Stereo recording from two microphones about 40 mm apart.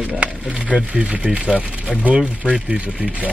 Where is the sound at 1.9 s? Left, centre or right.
Left.